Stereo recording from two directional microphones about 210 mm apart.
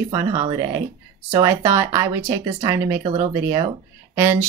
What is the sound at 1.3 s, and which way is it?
Speech, 15° right (ahead or behind).